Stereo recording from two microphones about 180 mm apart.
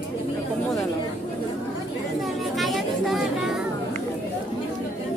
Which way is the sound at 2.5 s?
Centre (ahead or behind).